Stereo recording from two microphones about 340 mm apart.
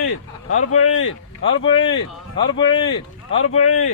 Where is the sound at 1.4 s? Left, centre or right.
Centre.